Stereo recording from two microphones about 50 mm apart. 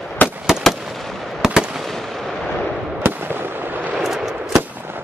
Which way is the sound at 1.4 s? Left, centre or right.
Centre.